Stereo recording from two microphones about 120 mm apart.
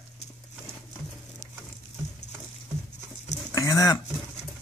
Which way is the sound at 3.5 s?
30° left (ahead or behind).